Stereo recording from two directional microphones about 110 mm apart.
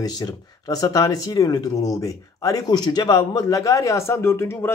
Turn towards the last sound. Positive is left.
turn(degrees=20)  # may be behind; listen again after turning